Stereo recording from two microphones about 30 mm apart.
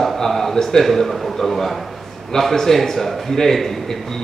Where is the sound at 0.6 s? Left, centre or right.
Centre.